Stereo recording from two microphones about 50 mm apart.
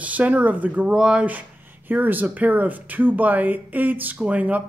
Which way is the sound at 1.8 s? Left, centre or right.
Right.